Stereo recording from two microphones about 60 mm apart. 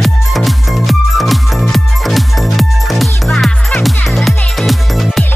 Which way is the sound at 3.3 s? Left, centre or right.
Centre.